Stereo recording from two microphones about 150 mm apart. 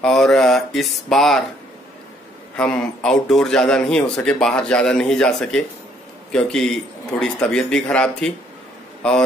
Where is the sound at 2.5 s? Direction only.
5° left (ahead or behind).